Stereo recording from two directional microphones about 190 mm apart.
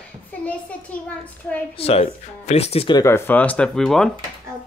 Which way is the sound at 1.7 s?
30° left (ahead or behind).